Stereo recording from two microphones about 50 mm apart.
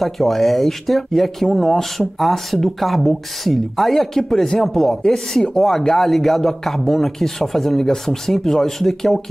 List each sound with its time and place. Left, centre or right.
0.0 s a man's voice: centre